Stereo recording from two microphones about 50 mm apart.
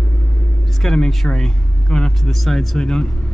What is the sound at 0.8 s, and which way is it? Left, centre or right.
Speech, centre.